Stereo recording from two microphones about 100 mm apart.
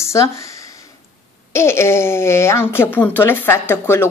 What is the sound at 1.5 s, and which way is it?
Speech, 25° left (ahead or behind).